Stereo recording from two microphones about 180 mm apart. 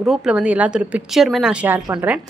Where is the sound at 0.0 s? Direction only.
5° right (ahead or behind).